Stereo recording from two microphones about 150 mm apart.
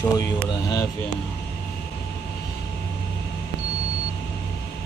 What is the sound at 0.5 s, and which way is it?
Speech, 25° left (ahead or behind).